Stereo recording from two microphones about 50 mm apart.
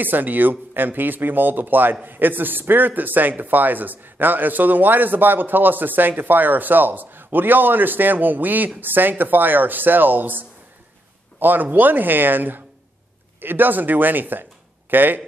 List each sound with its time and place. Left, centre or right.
0.0 s speech: right